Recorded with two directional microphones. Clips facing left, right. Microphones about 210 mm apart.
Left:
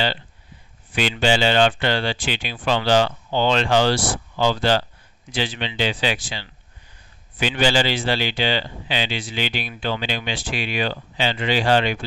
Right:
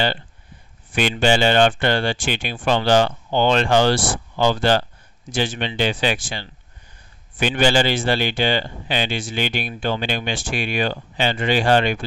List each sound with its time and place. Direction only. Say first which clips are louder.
1.2 s speech: right 2 dB; 50° right (ahead or behind)